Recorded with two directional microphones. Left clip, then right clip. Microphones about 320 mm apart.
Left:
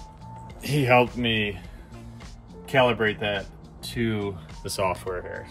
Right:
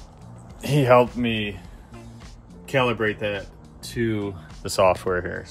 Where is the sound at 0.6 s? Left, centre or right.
Centre.